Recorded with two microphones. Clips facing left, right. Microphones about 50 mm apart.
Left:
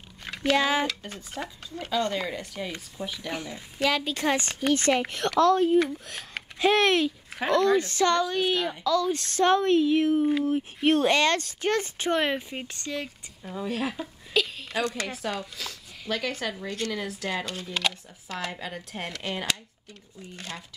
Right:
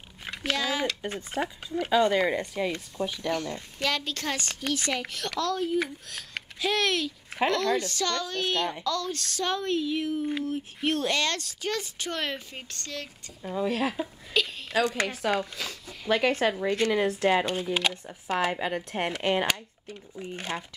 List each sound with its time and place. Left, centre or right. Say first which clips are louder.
0.2 s a sound: left 5 dB; centre
0.6 s speech: left 5 dB; left
1.0 s speech: right 5 dB; right
2.7 s speech: right 4 dB; centre
9.1 s speech: left 8 dB; left
13.4 s speech: right 3 dB; centre
15.5 s speech: right 2 dB; centre
18.0 s speech: right 7 dB; right